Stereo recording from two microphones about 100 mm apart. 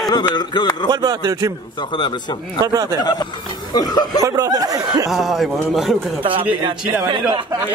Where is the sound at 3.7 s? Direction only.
40° left (ahead or behind).